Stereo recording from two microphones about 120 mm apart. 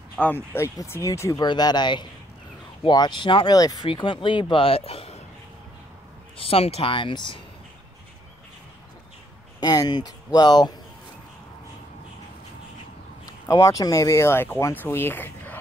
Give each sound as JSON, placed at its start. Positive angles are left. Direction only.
{"t": 0.2, "sound": "speech", "side_deg": 15}
{"t": 1.4, "sound": "speech", "side_deg": 35}
{"t": 3.5, "sound": "speech", "side_deg": 30}
{"t": 3.9, "sound": "speech", "side_deg": 45}
{"t": 6.3, "sound": "speech", "side_deg": 55}
{"t": 9.6, "sound": "speech", "side_deg": 35}
{"t": 13.5, "sound": "speech", "side_deg": 30}